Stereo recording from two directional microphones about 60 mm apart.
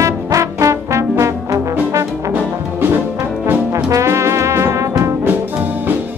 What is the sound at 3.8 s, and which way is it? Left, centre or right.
Brass instrument, right.